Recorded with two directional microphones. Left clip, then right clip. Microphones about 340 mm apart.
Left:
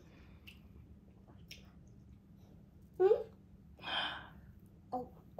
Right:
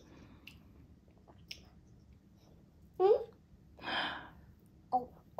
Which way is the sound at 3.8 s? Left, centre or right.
Right.